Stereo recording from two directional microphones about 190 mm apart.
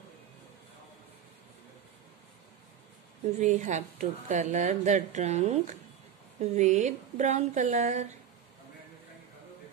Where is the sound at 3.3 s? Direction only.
40° right (ahead or behind).